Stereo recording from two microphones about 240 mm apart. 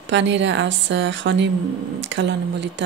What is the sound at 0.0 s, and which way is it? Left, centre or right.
A woman's voice, right.